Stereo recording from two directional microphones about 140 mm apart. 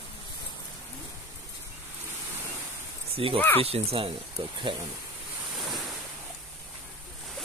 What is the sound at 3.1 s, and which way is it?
Speech, 40° right (ahead or behind).